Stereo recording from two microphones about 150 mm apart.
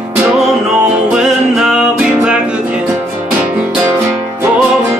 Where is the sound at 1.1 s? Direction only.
5° right (ahead or behind).